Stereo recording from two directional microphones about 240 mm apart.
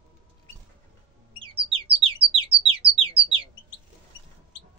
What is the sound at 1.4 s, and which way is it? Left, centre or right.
Chirp, right.